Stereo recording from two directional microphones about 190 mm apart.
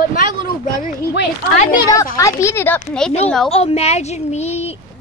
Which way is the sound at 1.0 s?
60° left (ahead or behind).